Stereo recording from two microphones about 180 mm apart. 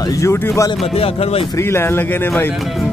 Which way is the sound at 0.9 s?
35° left (ahead or behind).